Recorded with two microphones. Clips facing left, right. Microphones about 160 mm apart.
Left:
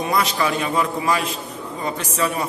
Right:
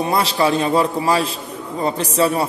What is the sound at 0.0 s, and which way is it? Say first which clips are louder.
A man's voice: right 3 dB; 30° right (ahead or behind).